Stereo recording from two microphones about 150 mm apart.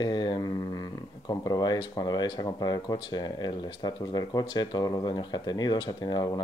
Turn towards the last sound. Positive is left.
turn(degrees=25)  # may be behind; listen again after turning